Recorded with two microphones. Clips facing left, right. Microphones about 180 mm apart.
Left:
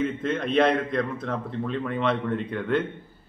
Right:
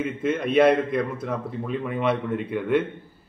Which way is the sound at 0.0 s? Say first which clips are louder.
Right 1 dB; 10° right (ahead or behind).